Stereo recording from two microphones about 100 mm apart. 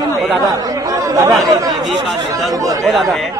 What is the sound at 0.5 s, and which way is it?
Chatter, 30° right (ahead or behind).